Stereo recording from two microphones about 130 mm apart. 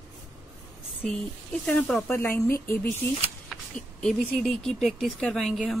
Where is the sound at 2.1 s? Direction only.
20° left (ahead or behind).